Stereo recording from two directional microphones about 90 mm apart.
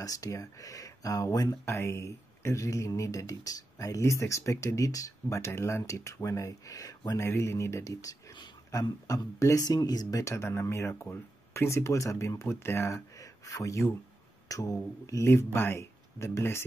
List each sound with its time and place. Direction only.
0.0 s speech: 40° left (ahead or behind)
7.1 s speech: 30° left (ahead or behind)
9.7 s speech: 45° left (ahead or behind); by 16.6 s 30° left (ahead or behind)